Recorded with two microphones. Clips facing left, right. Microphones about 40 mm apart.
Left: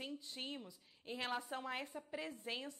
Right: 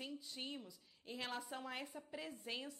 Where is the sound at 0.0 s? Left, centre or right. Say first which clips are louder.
Left 1 dB; centre.